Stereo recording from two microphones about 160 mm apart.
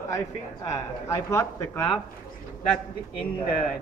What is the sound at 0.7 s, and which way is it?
Speech, 20° left (ahead or behind).